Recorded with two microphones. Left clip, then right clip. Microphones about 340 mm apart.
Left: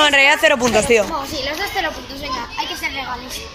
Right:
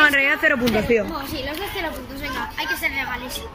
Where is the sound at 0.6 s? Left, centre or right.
Left.